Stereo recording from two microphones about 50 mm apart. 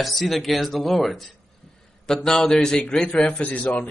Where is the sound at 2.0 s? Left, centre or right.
Centre.